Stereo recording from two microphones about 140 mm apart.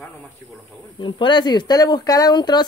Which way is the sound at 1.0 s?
35° left (ahead or behind).